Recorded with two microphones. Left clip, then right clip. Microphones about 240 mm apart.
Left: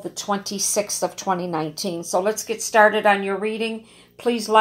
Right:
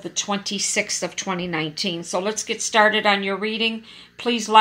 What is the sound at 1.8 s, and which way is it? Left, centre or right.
Speech, right.